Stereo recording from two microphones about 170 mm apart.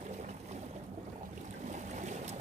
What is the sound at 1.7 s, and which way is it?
Boat, 45° right (ahead or behind).